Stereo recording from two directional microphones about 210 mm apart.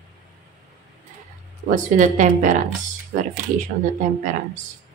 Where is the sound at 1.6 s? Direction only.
40° right (ahead or behind).